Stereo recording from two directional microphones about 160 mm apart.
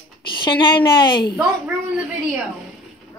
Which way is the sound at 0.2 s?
30° left (ahead or behind).